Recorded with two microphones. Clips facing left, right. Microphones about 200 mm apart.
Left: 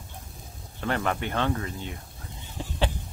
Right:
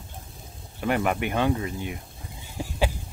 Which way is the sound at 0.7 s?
15° right (ahead or behind).